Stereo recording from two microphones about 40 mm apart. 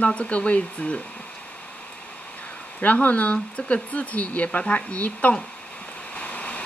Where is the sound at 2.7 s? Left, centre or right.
Left.